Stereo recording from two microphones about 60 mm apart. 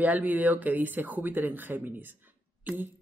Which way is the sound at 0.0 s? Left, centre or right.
Right.